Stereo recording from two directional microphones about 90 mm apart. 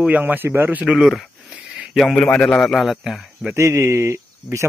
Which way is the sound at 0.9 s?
5° right (ahead or behind).